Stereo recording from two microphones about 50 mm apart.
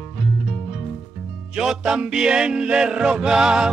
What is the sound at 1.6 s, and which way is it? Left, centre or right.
Music, centre.